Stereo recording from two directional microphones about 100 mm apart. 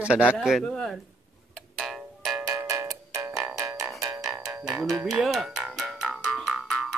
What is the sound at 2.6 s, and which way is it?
Music, 30° right (ahead or behind).